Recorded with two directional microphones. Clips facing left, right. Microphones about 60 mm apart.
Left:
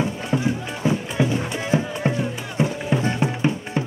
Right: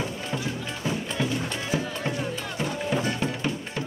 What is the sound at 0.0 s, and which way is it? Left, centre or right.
Music, left.